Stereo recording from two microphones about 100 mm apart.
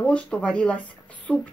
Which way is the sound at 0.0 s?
10° left (ahead or behind).